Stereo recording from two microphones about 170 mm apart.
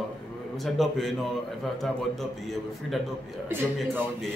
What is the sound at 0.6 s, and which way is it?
Speech, centre (ahead or behind).